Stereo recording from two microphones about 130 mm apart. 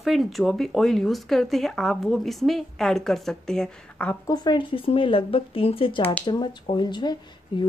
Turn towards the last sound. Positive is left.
turn(degrees=40)  # may be behind; listen again after turning